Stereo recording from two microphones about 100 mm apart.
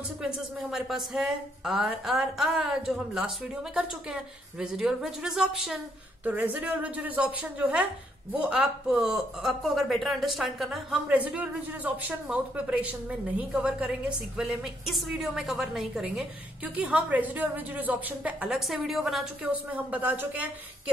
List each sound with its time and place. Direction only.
0.2 s speech: 5° right (ahead or behind)
11.1 s speech: 15° right (ahead or behind)
18.7 s speech: centre (ahead or behind)
19.5 s speech: 15° right (ahead or behind)